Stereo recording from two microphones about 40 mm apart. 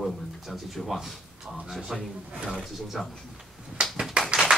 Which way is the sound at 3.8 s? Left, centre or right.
Centre.